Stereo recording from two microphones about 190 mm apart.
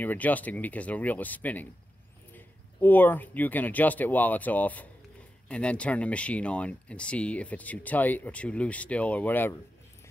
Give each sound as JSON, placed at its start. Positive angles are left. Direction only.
{"t": 0.0, "sound": "speech", "side_deg": 10}